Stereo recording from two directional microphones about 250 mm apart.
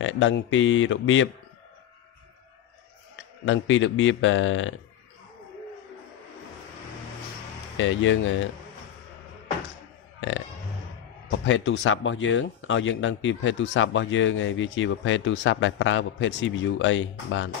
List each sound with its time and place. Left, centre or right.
0.0 s speech: left
3.4 s speech: left
7.7 s speech: left
11.2 s speech: left